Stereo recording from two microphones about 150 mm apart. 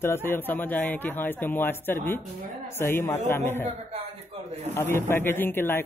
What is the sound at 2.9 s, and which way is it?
Speech, 15° left (ahead or behind).